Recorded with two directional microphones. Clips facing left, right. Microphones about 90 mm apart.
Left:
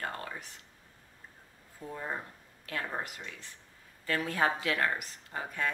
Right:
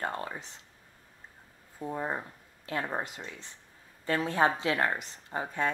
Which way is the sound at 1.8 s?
25° right (ahead or behind).